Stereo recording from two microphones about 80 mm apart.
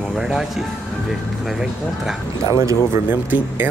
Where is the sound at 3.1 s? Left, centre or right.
Right.